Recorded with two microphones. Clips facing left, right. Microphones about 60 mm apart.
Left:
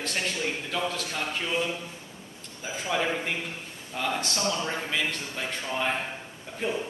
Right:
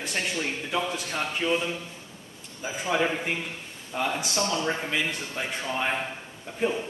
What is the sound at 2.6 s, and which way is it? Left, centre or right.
A man's voice, right.